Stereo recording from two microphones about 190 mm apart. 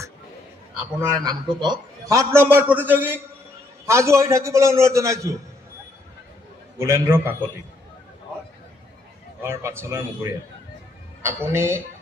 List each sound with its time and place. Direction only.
1.0 s a man's voice: 20° right (ahead or behind)
6.8 s a man's voice: 15° right (ahead or behind)
9.4 s a man's voice: 15° right (ahead or behind)
11.2 s a man's voice: 15° right (ahead or behind)